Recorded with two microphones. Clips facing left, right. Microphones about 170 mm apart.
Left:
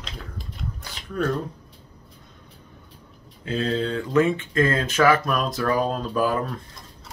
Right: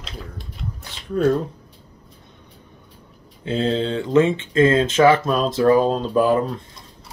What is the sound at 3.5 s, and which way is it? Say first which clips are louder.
Speech: right 4 dB; 25° right (ahead or behind).